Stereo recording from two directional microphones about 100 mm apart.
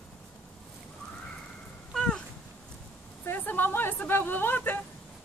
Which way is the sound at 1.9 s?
5° left (ahead or behind).